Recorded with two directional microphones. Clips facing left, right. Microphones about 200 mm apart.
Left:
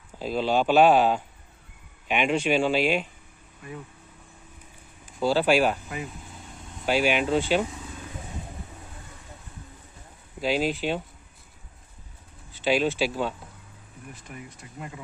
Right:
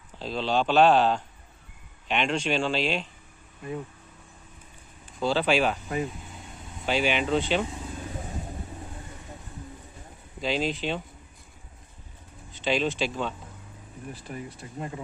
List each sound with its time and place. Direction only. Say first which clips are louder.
0.2 s speech: left 2 dB; 10° left (ahead or behind)
5.2 s speech: left 2 dB; 5° left (ahead or behind)
10.4 s speech: left 2 dB; 5° left (ahead or behind)
12.5 s speech: left 3 dB; 5° left (ahead or behind)
14.1 s speech: right 5 dB; 35° right (ahead or behind)